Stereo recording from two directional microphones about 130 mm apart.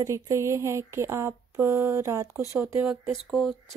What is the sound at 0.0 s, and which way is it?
Speech, 20° right (ahead or behind).